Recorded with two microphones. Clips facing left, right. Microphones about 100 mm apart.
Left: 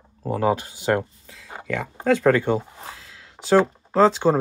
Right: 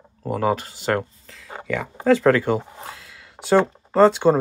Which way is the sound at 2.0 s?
Centre (ahead or behind).